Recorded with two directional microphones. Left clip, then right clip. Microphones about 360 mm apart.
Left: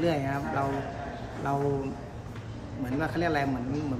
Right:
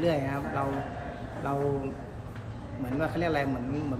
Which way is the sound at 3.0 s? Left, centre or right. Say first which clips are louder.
Even; centre.